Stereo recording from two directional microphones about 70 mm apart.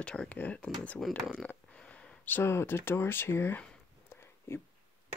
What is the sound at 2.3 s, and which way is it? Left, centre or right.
Speech, left.